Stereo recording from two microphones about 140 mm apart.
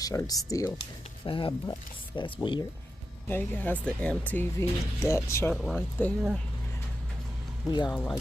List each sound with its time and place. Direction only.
0.0 s speech: 25° left (ahead or behind)
1.2 s speech: 35° left (ahead or behind)
3.3 s speech: 15° left (ahead or behind)
5.5 s speech: 5° left (ahead or behind)
7.9 s speech: 10° left (ahead or behind)